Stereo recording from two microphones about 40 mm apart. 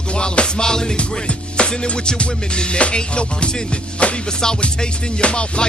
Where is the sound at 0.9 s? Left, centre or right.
Left.